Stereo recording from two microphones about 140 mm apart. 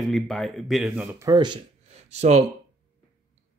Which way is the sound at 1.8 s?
50° right (ahead or behind).